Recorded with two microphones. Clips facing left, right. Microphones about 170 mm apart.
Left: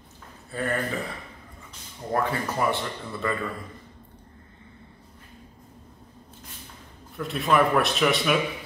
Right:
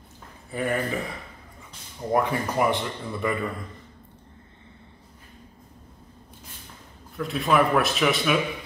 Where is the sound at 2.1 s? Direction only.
15° right (ahead or behind).